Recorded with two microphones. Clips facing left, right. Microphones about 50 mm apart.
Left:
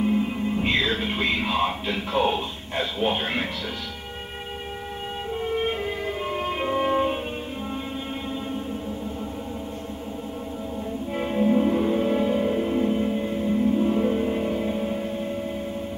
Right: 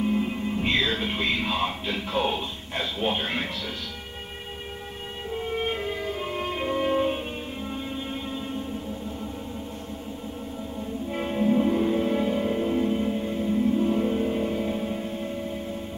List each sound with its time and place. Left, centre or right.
0.0 s music: centre
5.4 s music: centre
11.1 s music: centre